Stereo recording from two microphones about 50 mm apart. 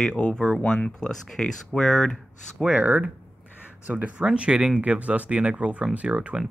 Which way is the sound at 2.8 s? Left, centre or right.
Right.